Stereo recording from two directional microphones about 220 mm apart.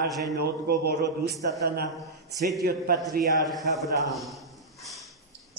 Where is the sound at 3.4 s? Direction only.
Centre (ahead or behind).